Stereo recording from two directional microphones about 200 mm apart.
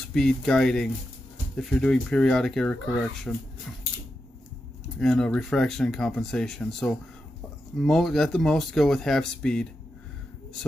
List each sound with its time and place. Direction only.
0.1 s speech: 5° left (ahead or behind)
4.9 s speech: 5° left (ahead or behind)